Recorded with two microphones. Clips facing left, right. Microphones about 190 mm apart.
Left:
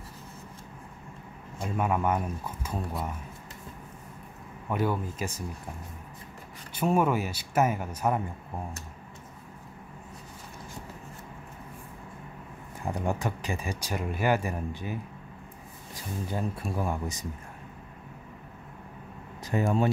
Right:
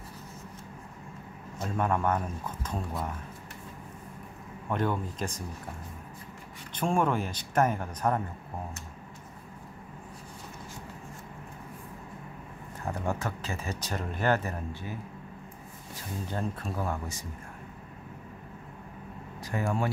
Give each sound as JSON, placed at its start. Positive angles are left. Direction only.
{"t": 1.6, "sound": "speech", "side_deg": 5}
{"t": 4.6, "sound": "speech", "side_deg": 5}
{"t": 6.7, "sound": "speech", "side_deg": 5}
{"t": 12.8, "sound": "speech", "side_deg": 15}
{"t": 16.3, "sound": "speech", "side_deg": 10}
{"t": 19.4, "sound": "speech", "side_deg": 20}